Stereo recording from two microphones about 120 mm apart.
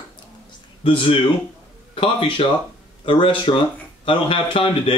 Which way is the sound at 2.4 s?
55° left (ahead or behind).